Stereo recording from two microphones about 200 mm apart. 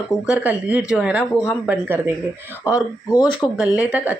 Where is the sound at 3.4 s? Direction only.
5° right (ahead or behind).